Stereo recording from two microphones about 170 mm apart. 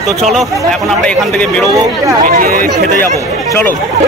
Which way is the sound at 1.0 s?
5° left (ahead or behind).